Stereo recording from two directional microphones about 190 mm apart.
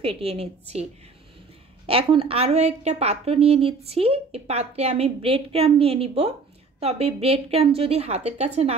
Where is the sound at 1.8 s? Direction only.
30° right (ahead or behind).